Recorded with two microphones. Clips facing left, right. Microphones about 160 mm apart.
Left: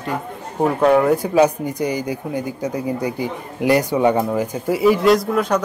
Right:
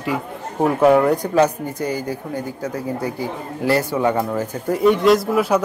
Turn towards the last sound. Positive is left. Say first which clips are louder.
# right 1 dB
turn(degrees=-5)  # may be behind; listen again after turning